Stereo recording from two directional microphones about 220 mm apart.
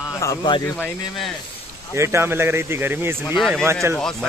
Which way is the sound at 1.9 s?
10° right (ahead or behind).